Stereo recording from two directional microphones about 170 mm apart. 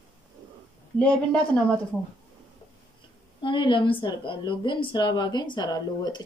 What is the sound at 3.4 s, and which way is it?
A woman's voice, 30° left (ahead or behind).